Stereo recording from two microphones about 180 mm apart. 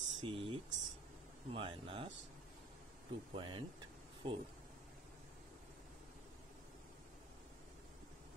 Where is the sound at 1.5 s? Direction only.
30° right (ahead or behind).